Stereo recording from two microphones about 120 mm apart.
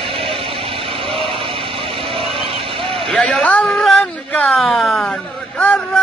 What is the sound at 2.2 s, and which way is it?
Vehicle, 50° right (ahead or behind).